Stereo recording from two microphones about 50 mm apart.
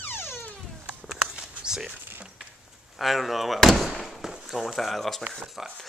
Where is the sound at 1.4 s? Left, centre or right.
Centre.